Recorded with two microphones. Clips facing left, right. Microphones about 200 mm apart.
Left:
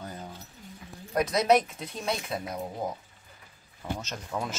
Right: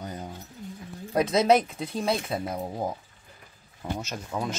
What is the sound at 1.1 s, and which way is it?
Speech, 25° right (ahead or behind).